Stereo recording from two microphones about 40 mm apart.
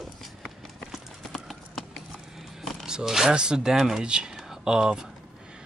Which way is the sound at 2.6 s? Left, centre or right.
Centre.